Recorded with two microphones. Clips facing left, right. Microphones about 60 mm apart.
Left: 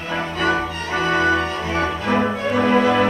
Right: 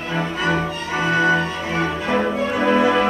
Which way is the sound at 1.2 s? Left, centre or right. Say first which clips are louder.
Even; centre.